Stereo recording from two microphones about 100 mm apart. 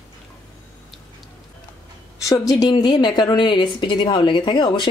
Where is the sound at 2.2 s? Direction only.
35° left (ahead or behind); by 4.9 s 55° left (ahead or behind).